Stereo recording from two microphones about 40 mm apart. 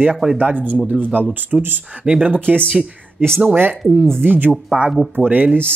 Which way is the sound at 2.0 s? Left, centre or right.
Right.